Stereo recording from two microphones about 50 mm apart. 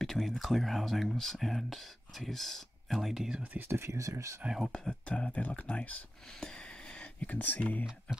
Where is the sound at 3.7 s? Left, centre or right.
Right.